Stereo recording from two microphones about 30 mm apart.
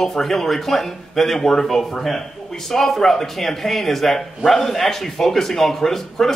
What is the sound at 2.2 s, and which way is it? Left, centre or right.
A man's voice, centre.